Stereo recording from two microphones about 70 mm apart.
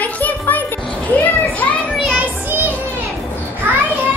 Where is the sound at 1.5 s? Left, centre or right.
Left.